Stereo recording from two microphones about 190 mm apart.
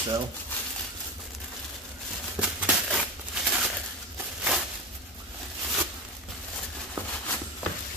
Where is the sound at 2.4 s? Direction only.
5° right (ahead or behind).